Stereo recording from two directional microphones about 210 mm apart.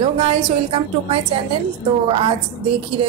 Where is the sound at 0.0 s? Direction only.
25° right (ahead or behind).